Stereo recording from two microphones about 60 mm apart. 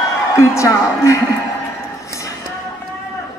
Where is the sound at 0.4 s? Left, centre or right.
Left.